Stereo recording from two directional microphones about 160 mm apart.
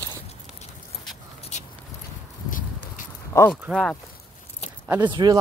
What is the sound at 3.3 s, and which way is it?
Speech, 20° left (ahead or behind).